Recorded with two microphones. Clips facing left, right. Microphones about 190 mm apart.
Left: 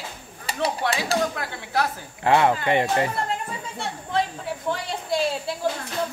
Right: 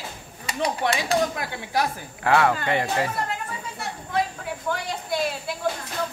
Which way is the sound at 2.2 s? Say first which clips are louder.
Left 1 dB; 20° left (ahead or behind).